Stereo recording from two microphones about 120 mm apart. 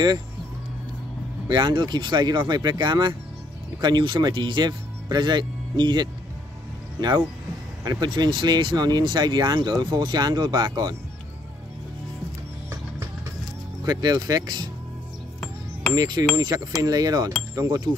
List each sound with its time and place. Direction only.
1.5 s speech: 40° right (ahead or behind)
13.8 s speech: 35° right (ahead or behind)
15.9 s speech: 30° right (ahead or behind)